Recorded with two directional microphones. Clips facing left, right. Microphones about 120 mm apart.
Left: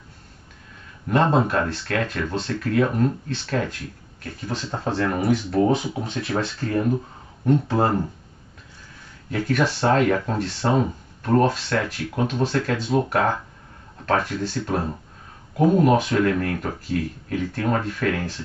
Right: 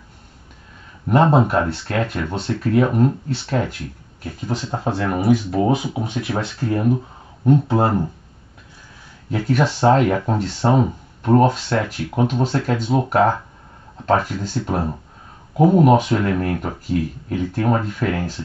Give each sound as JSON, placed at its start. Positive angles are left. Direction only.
{"t": 1.0, "sound": "speech", "side_deg": -15}
{"t": 9.3, "sound": "speech", "side_deg": -20}